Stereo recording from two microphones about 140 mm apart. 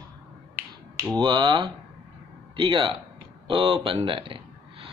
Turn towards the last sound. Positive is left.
turn(degrees=-40)  # may be behind; listen again after turning